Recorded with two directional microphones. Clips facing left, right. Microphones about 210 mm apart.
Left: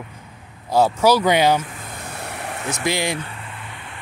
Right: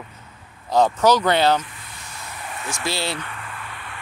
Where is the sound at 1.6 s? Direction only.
50° left (ahead or behind); by 2.6 s 70° left (ahead or behind).